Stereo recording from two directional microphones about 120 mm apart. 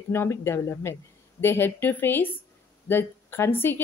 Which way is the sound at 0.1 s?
20° left (ahead or behind).